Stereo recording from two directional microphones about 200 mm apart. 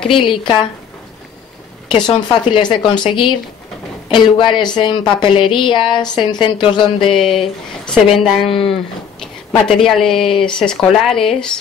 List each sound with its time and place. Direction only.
0.2 s speech: 25° left (ahead or behind)
1.9 s speech: 20° left (ahead or behind)
7.1 s speech: centre (ahead or behind)